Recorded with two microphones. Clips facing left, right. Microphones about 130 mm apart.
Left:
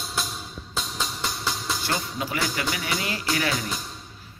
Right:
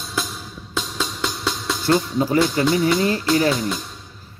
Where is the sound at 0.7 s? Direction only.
80° right.